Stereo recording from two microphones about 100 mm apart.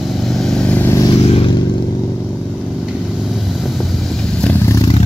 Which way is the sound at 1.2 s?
75° left (ahead or behind).